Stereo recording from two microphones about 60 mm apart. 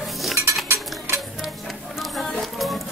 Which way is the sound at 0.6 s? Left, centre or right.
Right.